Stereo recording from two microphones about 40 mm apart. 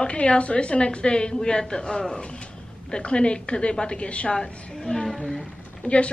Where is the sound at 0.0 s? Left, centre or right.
Left.